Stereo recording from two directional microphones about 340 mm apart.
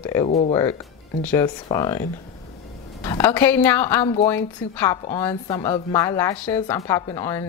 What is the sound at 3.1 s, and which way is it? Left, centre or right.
Speech, centre.